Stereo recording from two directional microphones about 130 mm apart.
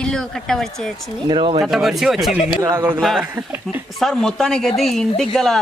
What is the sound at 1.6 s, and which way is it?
Speech, 5° right (ahead or behind).